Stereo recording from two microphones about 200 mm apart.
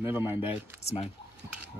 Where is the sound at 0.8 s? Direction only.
30° left (ahead or behind).